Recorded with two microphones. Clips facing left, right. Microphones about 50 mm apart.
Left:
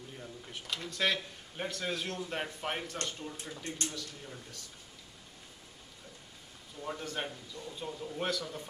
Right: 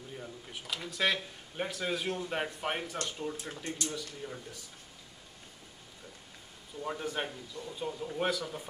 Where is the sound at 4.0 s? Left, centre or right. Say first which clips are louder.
Right 4 dB; centre.